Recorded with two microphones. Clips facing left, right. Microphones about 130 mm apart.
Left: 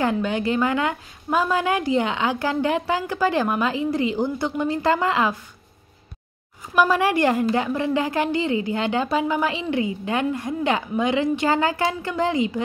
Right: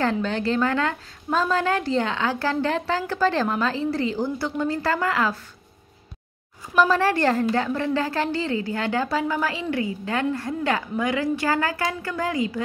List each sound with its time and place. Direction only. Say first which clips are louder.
0.0 s a woman's voice: left 1 dB; 10° left (ahead or behind)
6.7 s a woman's voice: left 1 dB; 10° left (ahead or behind)